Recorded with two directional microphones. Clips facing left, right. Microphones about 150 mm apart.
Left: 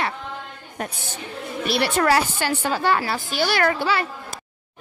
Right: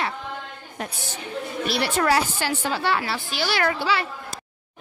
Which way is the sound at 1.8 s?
60° left (ahead or behind).